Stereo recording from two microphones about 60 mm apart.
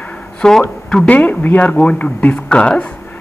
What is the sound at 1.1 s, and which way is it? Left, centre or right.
Speech, left.